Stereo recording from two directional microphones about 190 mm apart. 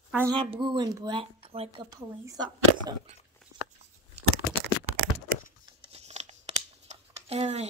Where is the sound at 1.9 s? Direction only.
20° right (ahead or behind).